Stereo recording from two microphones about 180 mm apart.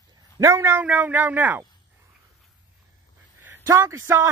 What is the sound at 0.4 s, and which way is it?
Speech, 15° right (ahead or behind).